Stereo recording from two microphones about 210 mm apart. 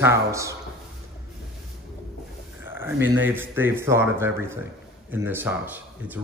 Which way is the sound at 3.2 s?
10° right (ahead or behind).